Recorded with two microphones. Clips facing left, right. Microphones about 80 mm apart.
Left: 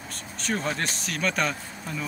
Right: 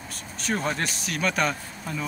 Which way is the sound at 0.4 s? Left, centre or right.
Centre.